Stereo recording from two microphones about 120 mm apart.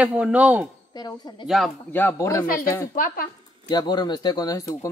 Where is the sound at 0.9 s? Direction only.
35° left (ahead or behind).